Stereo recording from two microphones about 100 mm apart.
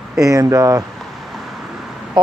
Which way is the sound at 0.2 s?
35° right (ahead or behind).